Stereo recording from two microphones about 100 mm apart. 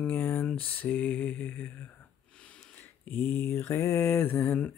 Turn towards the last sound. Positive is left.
turn(degrees=20)  # may be behind; listen again after turning